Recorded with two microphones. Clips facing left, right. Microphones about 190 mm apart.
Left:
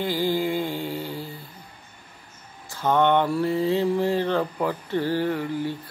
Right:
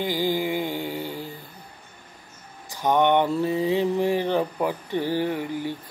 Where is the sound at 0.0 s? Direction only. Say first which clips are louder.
Left 1 dB; 15° right (ahead or behind).